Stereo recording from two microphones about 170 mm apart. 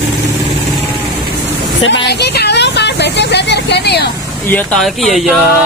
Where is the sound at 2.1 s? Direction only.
75° left (ahead or behind).